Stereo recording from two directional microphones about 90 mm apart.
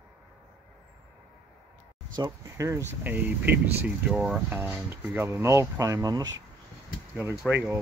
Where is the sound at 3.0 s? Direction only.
20° right (ahead or behind).